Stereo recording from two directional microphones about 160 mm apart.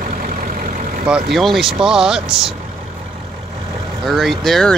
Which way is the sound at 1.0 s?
5° right (ahead or behind).